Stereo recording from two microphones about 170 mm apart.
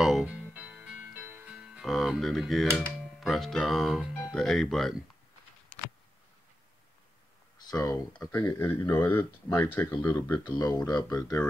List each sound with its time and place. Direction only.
0.0 s music: 5° right (ahead or behind)
3.2 s speech: centre (ahead or behind)
7.6 s speech: 20° left (ahead or behind)
10.4 s speech: 25° left (ahead or behind)